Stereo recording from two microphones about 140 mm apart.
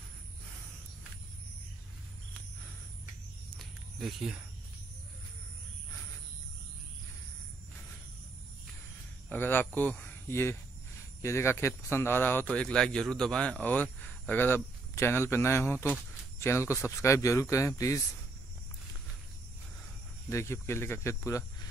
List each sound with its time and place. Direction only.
3.4 s snake: centre (ahead or behind)
9.3 s speech: 15° left (ahead or behind)
20.2 s speech: 20° left (ahead or behind)